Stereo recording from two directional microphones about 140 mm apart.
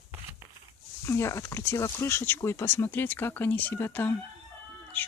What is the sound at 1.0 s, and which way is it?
Speech, 20° left (ahead or behind).